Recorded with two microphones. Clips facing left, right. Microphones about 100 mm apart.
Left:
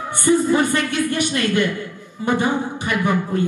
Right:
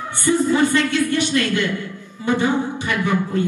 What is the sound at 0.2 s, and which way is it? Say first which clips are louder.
A woman's voice: left 1 dB; 20° left (ahead or behind).